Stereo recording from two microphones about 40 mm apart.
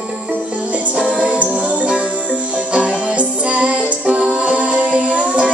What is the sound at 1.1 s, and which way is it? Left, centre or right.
Music, right.